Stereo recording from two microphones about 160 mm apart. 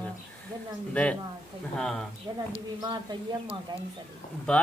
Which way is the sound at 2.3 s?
20° right (ahead or behind).